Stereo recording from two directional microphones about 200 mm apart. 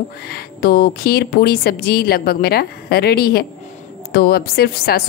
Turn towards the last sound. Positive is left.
turn(degrees=50)  # may be behind; listen again after turning